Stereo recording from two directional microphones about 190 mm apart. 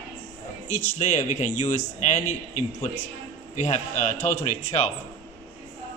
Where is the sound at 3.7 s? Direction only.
40° left (ahead or behind).